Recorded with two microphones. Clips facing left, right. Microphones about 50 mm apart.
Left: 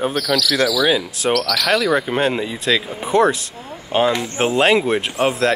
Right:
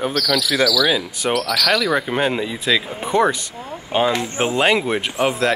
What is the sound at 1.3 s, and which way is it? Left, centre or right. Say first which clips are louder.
Speech: even; centre.